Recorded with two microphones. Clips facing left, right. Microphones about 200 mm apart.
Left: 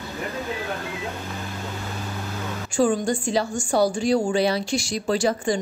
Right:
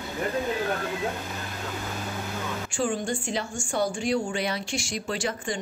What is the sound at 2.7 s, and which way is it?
A woman's voice, 40° left (ahead or behind).